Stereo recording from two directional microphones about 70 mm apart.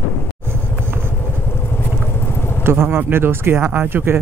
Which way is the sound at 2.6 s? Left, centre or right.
Right.